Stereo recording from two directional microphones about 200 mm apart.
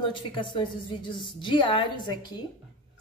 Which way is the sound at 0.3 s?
25° left (ahead or behind).